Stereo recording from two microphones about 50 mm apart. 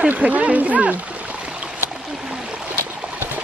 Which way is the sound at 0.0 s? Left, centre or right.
Right.